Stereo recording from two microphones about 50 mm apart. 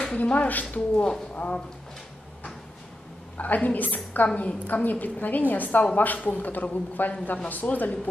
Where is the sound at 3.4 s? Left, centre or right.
Left.